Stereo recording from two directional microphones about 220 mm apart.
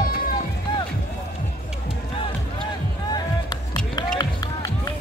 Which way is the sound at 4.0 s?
20° left (ahead or behind).